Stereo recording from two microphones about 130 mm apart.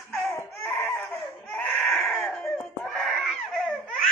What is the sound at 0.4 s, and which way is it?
Baby cry, 15° left (ahead or behind).